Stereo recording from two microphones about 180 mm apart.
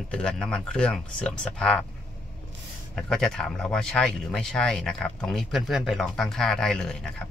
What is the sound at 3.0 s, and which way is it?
Speech, 5° left (ahead or behind).